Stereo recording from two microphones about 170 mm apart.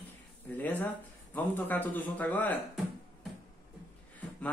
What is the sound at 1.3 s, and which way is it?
Speech, 10° left (ahead or behind).